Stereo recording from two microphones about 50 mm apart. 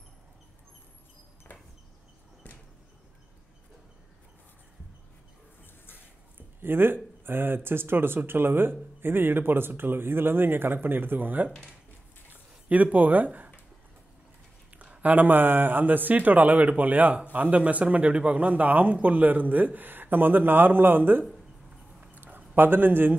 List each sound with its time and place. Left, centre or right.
6.6 s speech: right
12.3 s drip: right
14.7 s speech: right
22.1 s a sound: right
22.6 s speech: right